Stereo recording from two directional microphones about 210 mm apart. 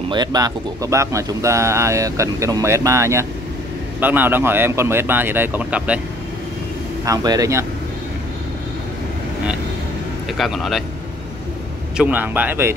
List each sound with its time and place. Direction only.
0.1 s speech: 20° right (ahead or behind)
7.1 s speech: 15° right (ahead or behind)
10.3 s speech: centre (ahead or behind)
12.0 s speech: 10° right (ahead or behind)